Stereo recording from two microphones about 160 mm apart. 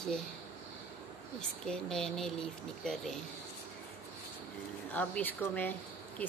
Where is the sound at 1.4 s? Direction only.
5° left (ahead or behind).